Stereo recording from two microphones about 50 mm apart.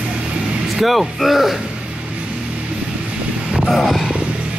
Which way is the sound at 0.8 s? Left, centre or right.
Centre.